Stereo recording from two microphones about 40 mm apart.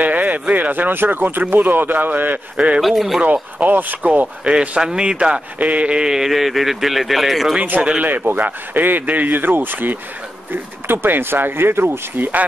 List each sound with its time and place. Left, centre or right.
0.0 s speech: right
2.5 s a man's voice: right
2.8 s speech: centre
3.5 s speech: right
4.5 s a man's voice: right
5.6 s speech: right
6.0 s speech: centre
8.0 s speech: right
12.2 s speech: right